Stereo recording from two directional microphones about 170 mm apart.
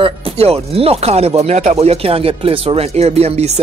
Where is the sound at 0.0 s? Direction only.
35° right (ahead or behind).